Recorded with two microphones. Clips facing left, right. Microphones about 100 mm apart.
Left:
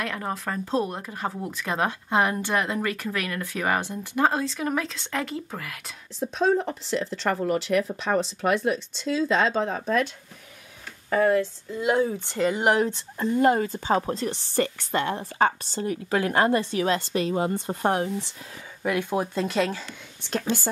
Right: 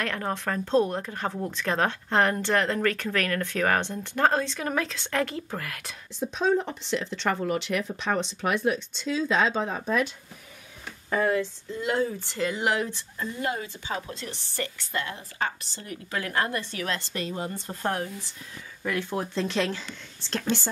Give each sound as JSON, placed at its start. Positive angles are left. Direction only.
{"t": 0.0, "sound": "speech", "side_deg": 5}
{"t": 11.1, "sound": "speech", "side_deg": 0}
{"t": 11.7, "sound": "speech", "side_deg": 15}
{"t": 12.6, "sound": "speech", "side_deg": 25}
{"t": 13.3, "sound": "a woman's voice", "side_deg": 45}
{"t": 15.1, "sound": "a woman's voice", "side_deg": 55}
{"t": 15.7, "sound": "speech", "side_deg": 25}